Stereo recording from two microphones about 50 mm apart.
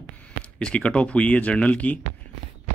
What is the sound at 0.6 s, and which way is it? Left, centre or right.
Speech, left.